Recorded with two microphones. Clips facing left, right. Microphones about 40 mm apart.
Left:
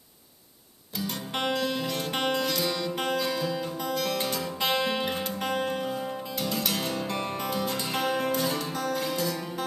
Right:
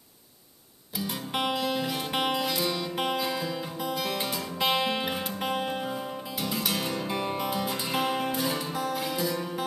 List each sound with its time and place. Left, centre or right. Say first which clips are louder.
0.9 s music: right 1 dB; centre